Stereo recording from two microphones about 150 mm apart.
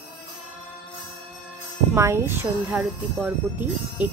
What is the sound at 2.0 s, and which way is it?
Speech, 20° right (ahead or behind).